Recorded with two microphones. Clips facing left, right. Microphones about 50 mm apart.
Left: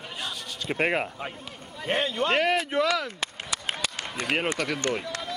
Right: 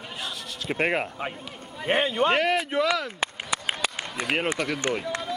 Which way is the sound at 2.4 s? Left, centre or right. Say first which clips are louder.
Even; centre.